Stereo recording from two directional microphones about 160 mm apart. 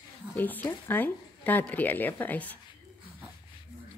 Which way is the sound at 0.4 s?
10° left (ahead or behind).